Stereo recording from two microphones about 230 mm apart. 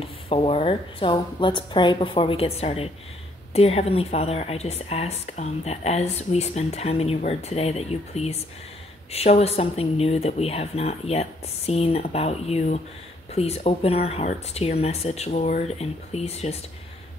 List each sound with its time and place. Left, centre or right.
0.0 s a woman's voice: left